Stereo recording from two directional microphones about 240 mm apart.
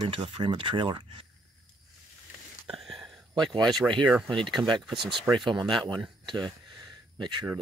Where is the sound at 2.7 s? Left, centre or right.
Centre.